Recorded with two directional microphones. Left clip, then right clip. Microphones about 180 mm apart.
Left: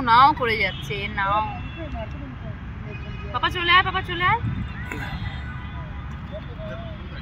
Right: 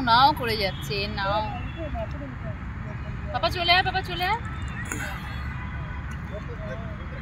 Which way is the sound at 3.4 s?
90° right.